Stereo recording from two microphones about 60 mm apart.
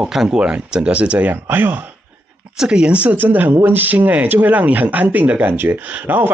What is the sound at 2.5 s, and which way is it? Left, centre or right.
Speech, centre.